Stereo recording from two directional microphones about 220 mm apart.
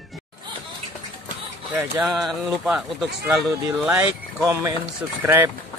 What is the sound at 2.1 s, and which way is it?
Speech, centre (ahead or behind).